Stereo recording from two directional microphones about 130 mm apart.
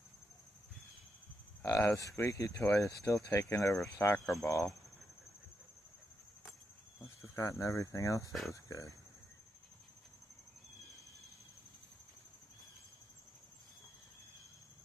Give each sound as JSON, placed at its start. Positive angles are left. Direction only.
{"t": 1.6, "sound": "speech", "side_deg": 20}
{"t": 7.0, "sound": "speech", "side_deg": 25}
{"t": 8.3, "sound": "speech", "side_deg": 0}
{"t": 8.6, "sound": "speech", "side_deg": 25}